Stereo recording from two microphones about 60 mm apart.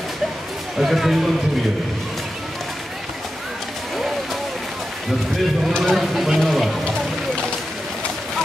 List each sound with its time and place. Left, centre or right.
0.7 s speech: centre
5.7 s speech: centre